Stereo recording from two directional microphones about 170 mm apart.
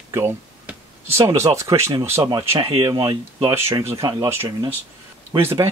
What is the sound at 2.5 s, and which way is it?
Speech, 35° right (ahead or behind).